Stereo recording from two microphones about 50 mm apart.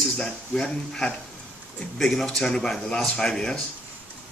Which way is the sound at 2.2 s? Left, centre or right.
Centre.